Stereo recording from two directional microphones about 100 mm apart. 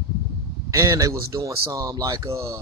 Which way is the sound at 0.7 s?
30° right (ahead or behind).